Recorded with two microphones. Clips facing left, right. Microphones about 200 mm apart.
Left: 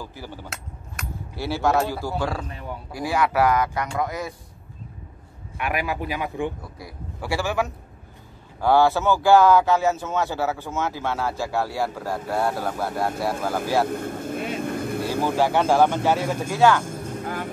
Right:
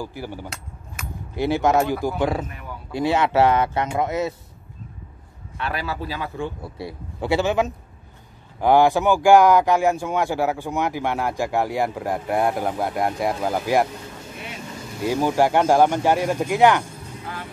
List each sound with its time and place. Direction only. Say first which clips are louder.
0.0 s speech: right 5 dB; 15° right (ahead or behind)
2.5 s a sound: left 3 dB; 25° left (ahead or behind)
2.9 s speech: right 4 dB; 25° right (ahead or behind)
5.6 s speech: left 1 dB; 15° left (ahead or behind)
6.6 s speech: right 6 dB; 25° right (ahead or behind)
13.8 s vehicle: left 9 dB; 55° left (ahead or behind)
15.2 s speech: right 3 dB; 15° right (ahead or behind)
16.8 s vehicle: left 6 dB; 50° left (ahead or behind)